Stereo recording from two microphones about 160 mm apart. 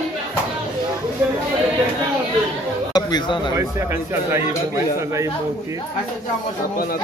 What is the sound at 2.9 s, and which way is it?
Speech, 25° left (ahead or behind).